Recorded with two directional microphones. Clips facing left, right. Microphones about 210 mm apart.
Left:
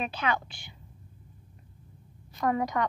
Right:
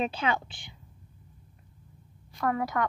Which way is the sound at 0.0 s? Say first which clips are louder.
Right 2 dB; 25° right (ahead or behind).